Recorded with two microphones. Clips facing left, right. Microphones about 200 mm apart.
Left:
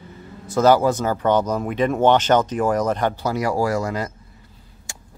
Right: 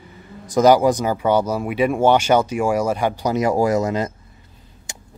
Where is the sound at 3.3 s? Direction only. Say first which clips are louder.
Right 6 dB; 20° right (ahead or behind).